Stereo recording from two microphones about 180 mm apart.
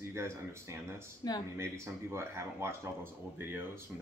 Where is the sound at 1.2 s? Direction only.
20° left (ahead or behind).